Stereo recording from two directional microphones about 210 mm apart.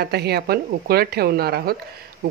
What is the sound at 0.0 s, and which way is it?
Speech, 50° right (ahead or behind).